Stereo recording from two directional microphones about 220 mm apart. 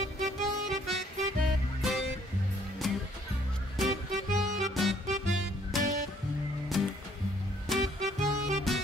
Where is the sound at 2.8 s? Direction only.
Centre (ahead or behind).